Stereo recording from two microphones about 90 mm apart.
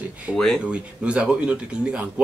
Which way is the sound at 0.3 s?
25° left (ahead or behind).